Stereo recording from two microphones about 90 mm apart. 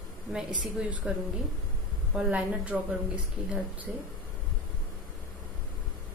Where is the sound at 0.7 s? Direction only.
10° right (ahead or behind).